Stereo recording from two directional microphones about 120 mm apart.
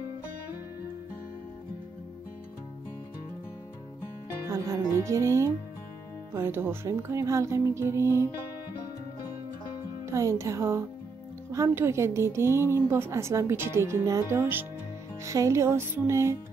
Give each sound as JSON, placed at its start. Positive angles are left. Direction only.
{"t": 4.5, "sound": "a woman's voice", "side_deg": -25}
{"t": 10.0, "sound": "a woman's voice", "side_deg": -25}